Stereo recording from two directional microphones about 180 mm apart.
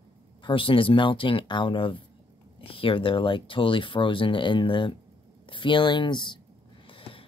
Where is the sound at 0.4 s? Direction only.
25° left (ahead or behind).